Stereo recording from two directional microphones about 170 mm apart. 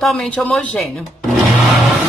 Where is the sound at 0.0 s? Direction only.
Centre (ahead or behind).